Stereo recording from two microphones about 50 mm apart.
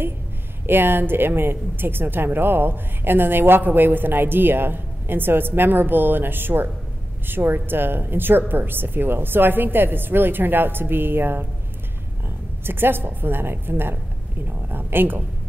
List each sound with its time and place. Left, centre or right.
0.7 s speech: right
12.6 s speech: right